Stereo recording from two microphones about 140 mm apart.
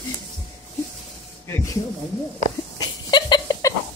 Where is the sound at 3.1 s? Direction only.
30° left (ahead or behind).